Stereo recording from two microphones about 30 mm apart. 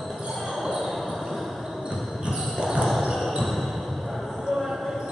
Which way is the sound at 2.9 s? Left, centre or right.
Centre.